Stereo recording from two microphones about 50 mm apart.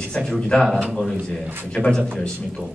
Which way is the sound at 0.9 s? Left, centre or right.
Centre.